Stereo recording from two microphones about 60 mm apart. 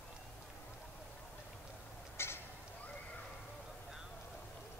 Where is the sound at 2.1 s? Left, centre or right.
Left.